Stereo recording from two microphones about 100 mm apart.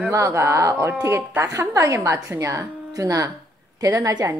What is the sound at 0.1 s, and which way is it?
A woman's voice, 30° right (ahead or behind).